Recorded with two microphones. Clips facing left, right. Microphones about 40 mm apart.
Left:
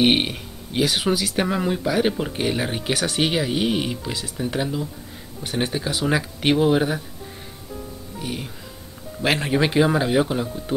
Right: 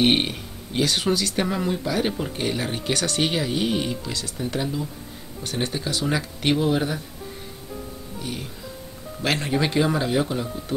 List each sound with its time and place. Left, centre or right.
0.0 s speech: centre
8.2 s speech: centre